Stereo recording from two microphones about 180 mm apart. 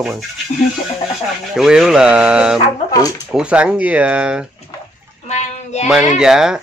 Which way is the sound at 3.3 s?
5° right (ahead or behind).